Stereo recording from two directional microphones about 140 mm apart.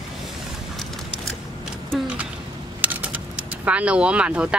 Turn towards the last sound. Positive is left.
turn(degrees=-5)  # may be behind; listen again after turning